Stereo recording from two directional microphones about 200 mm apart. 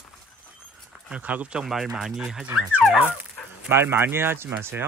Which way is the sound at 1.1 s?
5° right (ahead or behind).